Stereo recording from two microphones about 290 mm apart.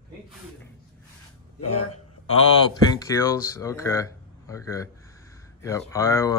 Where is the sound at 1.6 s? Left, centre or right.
Left.